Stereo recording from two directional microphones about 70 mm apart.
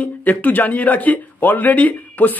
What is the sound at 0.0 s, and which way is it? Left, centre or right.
A man's voice, left.